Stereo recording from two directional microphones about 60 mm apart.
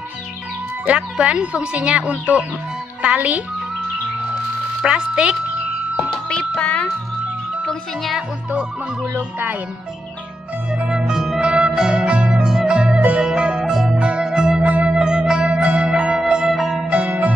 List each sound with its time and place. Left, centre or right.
0.9 s speech: centre
4.8 s speech: centre
6.2 s music: centre
9.0 s music: right
10.7 s music: centre
16.5 s zither: centre